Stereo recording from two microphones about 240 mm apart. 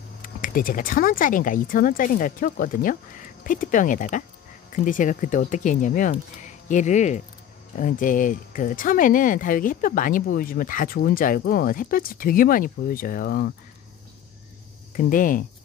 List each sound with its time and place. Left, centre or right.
0.2 s speech: left
15.0 s speech: left